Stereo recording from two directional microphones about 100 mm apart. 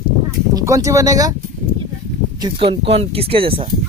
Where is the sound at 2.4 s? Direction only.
60° right (ahead or behind).